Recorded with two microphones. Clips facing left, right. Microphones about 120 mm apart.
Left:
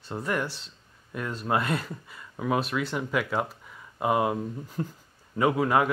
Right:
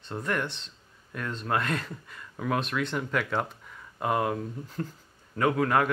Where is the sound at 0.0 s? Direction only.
5° left (ahead or behind).